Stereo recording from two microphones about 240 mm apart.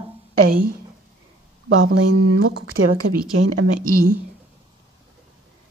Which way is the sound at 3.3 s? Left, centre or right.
Right.